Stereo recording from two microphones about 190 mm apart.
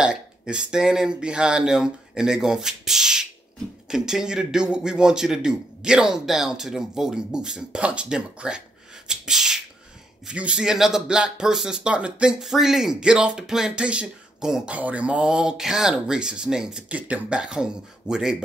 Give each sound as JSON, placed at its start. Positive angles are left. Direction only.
{"t": 0.0, "sound": "speech", "side_deg": -5}